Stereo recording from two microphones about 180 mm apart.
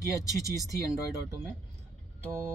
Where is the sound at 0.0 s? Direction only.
15° left (ahead or behind).